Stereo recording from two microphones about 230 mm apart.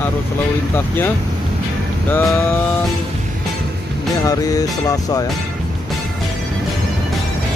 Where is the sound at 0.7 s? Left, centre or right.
Centre.